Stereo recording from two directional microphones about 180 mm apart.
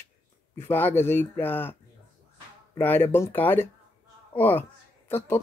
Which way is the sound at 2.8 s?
10° left (ahead or behind).